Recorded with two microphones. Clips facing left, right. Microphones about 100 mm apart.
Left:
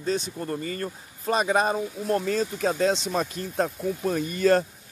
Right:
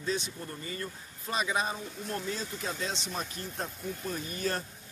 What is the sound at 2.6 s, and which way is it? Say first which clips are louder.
Speech: left 14 dB; 60° left (ahead or behind).